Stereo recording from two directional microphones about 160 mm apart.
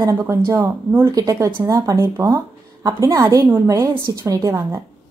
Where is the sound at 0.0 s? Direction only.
15° right (ahead or behind).